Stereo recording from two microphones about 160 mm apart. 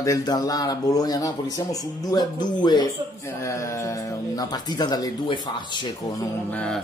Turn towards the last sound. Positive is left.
turn(degrees=10)  # may be behind; listen again after turning